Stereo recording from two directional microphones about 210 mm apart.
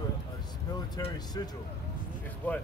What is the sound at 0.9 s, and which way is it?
Speech, 20° left (ahead or behind).